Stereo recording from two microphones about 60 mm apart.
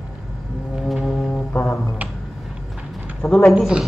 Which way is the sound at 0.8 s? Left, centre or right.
Centre.